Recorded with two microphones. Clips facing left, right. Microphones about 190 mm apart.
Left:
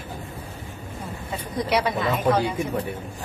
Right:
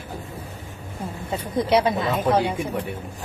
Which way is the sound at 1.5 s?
25° right (ahead or behind).